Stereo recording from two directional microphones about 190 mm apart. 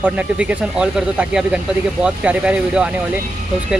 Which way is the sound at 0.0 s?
5° right (ahead or behind).